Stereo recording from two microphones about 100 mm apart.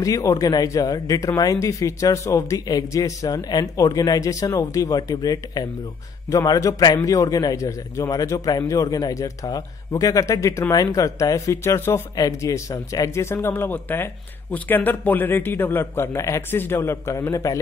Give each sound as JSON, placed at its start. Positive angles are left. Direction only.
{"t": 0.0, "sound": "speech", "side_deg": 35}